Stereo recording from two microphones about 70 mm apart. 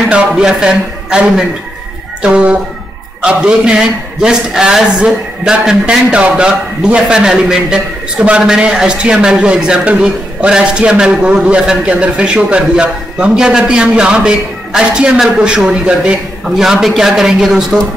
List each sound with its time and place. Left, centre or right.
0.1 s a man's voice: centre